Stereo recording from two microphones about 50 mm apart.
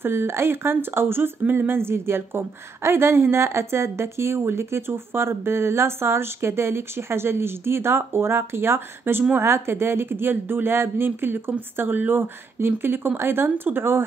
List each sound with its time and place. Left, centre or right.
0.0 s a woman's voice: right